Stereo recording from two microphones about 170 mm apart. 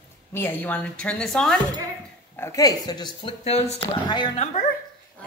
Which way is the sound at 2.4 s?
20° left (ahead or behind).